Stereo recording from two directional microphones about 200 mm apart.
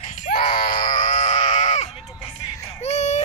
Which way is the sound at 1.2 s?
35° left (ahead or behind).